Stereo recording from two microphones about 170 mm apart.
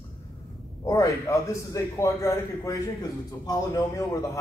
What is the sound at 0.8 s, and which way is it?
A man's voice, 20° left (ahead or behind).